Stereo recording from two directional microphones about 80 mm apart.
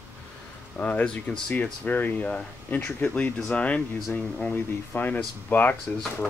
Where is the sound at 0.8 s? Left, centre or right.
Centre.